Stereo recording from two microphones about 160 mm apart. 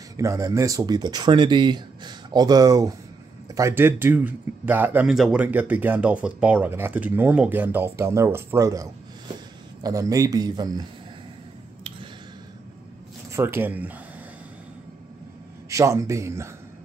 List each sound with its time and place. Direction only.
0.2 s speech: 20° right (ahead or behind)
9.8 s speech: 20° right (ahead or behind)
13.3 s speech: 15° right (ahead or behind)
15.7 s speech: 20° right (ahead or behind)